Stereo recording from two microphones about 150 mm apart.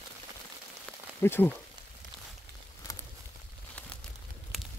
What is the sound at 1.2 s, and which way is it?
Speech, 15° left (ahead or behind).